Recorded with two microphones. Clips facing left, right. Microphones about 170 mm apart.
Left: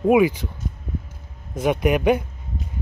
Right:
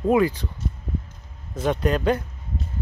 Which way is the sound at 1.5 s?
10° left (ahead or behind).